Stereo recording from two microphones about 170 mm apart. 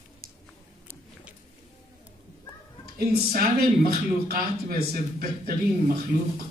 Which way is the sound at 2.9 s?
60° right (ahead or behind).